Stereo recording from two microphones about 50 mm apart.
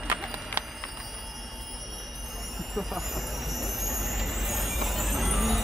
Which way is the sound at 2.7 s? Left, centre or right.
Centre.